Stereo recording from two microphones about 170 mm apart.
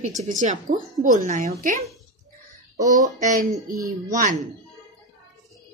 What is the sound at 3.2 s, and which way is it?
Speech, 50° right (ahead or behind).